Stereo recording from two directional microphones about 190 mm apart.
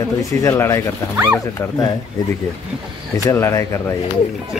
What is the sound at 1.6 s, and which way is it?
Speech, 10° left (ahead or behind).